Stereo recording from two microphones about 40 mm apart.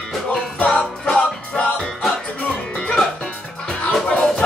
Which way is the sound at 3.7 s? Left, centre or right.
Left.